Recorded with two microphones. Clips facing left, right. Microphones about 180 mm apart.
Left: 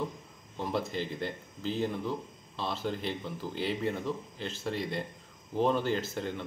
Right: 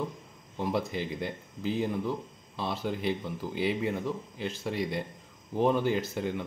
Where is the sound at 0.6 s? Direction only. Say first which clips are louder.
Right 2 dB; 15° right (ahead or behind).